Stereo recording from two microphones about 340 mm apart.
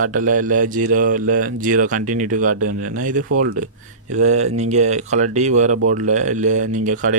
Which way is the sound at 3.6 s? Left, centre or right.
Right.